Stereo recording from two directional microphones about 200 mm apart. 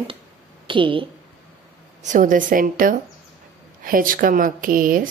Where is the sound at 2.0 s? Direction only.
40° right (ahead or behind).